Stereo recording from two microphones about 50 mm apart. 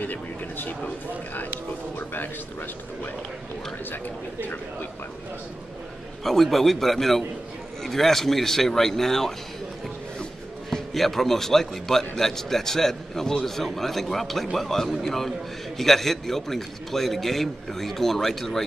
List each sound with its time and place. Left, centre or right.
0.0 s speech: left
3.9 s speech: left
6.2 s a man's voice: centre
10.7 s a man's voice: centre